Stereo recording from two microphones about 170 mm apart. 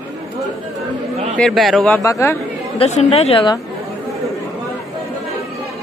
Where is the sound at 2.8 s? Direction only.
40° left (ahead or behind).